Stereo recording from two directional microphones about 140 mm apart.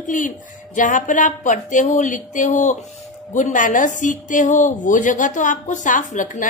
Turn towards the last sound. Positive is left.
turn(degrees=65)  # may be behind; listen again after turning